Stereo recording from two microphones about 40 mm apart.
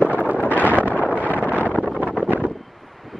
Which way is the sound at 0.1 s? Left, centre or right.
Right.